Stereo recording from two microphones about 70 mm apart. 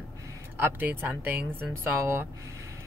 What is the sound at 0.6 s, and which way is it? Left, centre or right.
Speech, right.